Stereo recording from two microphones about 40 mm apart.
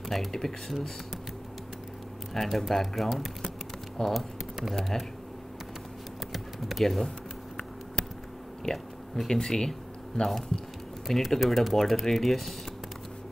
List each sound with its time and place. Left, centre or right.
0.1 s speech: centre
2.3 s speech: centre
4.0 s speech: centre
4.6 s speech: centre
6.3 s typing: centre
8.6 s speech: centre
11.1 s speech: centre